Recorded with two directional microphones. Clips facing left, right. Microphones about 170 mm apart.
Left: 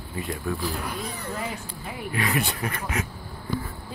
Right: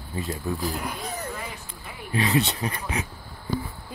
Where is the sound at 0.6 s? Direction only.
40° right (ahead or behind).